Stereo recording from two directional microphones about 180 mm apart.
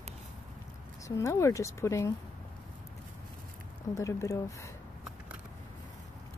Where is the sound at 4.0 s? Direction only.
20° left (ahead or behind).